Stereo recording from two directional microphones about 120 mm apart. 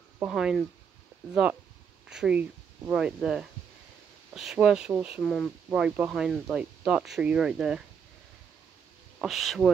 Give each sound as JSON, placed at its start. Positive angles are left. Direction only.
{"t": 0.2, "sound": "speech", "side_deg": -5}
{"t": 5.2, "sound": "speech", "side_deg": 5}
{"t": 5.7, "sound": "speech", "side_deg": -10}
{"t": 9.2, "sound": "speech", "side_deg": 0}